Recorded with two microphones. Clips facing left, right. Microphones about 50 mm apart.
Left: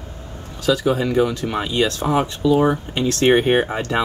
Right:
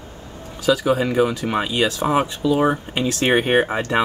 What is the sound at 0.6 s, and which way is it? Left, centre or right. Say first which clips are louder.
Speech: even; centre.